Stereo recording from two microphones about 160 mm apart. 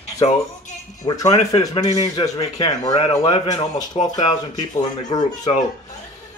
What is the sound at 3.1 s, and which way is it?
Speech, 20° left (ahead or behind).